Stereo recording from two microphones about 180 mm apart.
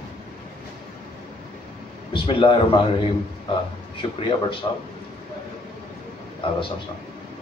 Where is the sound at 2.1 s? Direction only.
25° left (ahead or behind).